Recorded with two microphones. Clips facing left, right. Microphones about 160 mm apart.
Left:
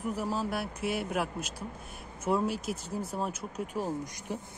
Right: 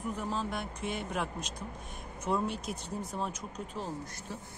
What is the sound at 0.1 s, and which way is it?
A woman's voice, 5° left (ahead or behind).